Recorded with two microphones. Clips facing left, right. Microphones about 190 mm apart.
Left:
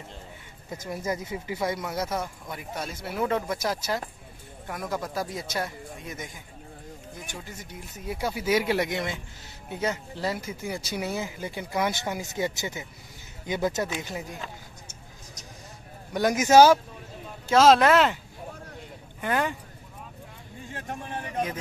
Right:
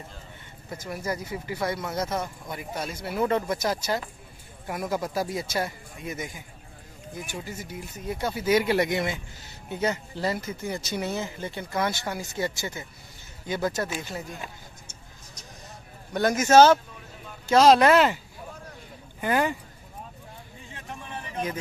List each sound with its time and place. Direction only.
0.7 s a man's voice: 20° left (ahead or behind); by 7.7 s 5° right (ahead or behind)
8.1 s a man's voice: 5° left (ahead or behind)
16.1 s speech: 15° left (ahead or behind)
17.5 s a man's voice: centre (ahead or behind)
19.2 s a man's voice: 5° right (ahead or behind)
20.7 s a sound: 45° left (ahead or behind)